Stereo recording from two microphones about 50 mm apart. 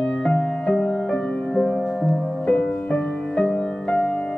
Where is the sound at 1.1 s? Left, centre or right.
Centre.